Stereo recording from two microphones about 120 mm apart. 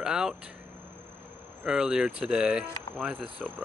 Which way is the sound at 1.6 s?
5° right (ahead or behind).